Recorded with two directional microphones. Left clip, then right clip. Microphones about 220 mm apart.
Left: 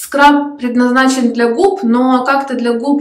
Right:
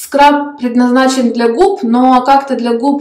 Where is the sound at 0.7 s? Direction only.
20° right (ahead or behind).